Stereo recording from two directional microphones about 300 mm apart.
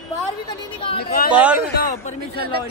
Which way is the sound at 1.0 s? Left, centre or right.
Left.